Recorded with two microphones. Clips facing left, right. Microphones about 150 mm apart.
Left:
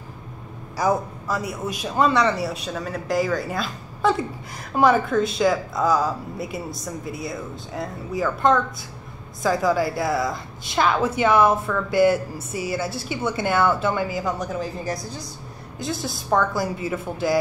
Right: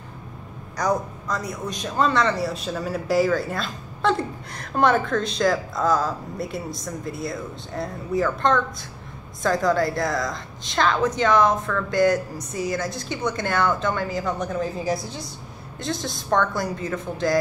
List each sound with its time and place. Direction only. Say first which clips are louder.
0.7 s a man's voice: left 2 dB; 5° left (ahead or behind)
15.8 s speech: even; 5° left (ahead or behind)